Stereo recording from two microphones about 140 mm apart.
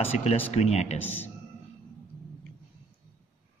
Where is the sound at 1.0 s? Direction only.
15° left (ahead or behind).